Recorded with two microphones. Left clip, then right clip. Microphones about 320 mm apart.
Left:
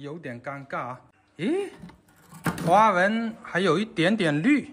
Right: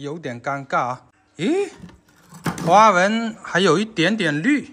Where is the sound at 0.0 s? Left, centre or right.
Centre.